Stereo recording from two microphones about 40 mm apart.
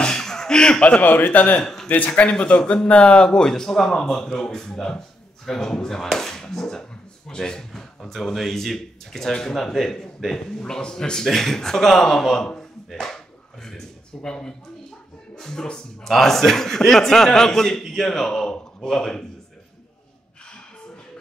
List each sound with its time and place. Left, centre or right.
0.0 s a sound: centre
1.0 s a man's voice: left
1.9 s speech: left
3.3 s speech: centre
12.4 s a sound: left
13.0 s speech: centre